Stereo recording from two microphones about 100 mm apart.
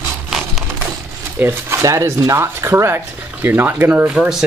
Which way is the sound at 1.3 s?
25° right (ahead or behind).